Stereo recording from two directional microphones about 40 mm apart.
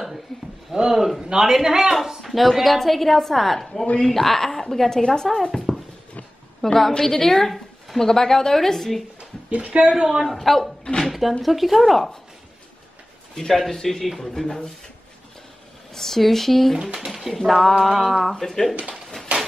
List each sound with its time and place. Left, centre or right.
0.9 s speech: centre
2.0 s a woman's voice: centre
9.2 s speech: right
10.2 s a woman's voice: centre
13.3 s a woman's voice: centre
15.9 s speech: centre
16.8 s a woman's voice: centre